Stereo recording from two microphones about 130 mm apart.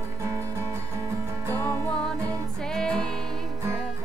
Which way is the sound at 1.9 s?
5° left (ahead or behind).